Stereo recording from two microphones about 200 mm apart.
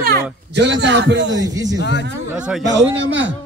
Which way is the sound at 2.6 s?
65° right (ahead or behind).